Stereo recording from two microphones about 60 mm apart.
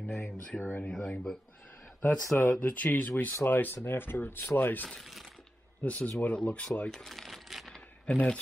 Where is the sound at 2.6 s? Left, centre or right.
Left.